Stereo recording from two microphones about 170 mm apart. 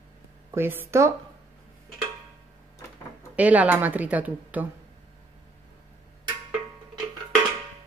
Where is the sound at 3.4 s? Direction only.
10° right (ahead or behind).